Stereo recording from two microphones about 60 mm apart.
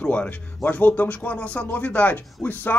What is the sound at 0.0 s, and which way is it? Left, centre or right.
Speech, left.